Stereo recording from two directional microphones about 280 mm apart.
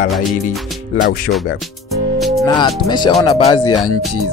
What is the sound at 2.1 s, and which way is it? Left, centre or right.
Music, centre.